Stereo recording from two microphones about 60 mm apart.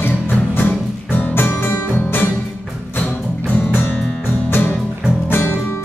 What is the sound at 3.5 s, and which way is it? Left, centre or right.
Music, left.